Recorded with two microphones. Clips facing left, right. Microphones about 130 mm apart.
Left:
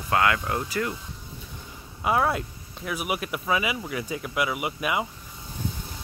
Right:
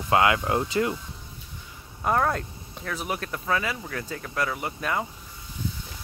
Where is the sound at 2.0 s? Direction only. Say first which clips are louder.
Even; 5° left (ahead or behind).